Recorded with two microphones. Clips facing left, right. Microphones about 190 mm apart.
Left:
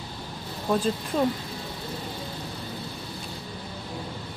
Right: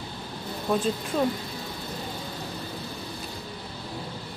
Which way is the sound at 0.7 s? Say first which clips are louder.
Left 1 dB; centre (ahead or behind).